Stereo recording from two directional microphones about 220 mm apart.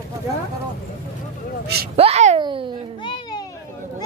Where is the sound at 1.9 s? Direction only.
30° right (ahead or behind).